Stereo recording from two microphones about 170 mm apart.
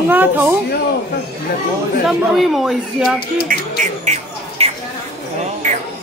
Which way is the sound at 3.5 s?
55° right (ahead or behind).